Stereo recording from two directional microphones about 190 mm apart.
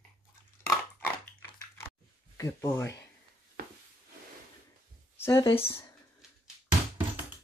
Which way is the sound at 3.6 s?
50° right (ahead or behind).